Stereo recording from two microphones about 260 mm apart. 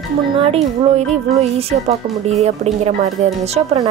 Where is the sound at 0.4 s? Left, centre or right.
Right.